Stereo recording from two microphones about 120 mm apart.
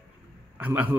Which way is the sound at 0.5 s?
15° right (ahead or behind).